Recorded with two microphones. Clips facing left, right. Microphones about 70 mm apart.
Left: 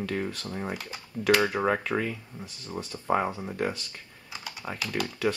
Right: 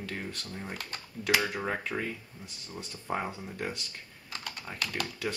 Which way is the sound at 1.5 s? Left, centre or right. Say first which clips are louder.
Left 7 dB; left.